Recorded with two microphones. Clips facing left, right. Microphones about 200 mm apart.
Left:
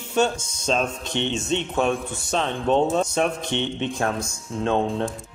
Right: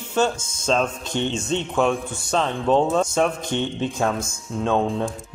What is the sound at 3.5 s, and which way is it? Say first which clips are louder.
Speech: right 1 dB; 45° right (ahead or behind).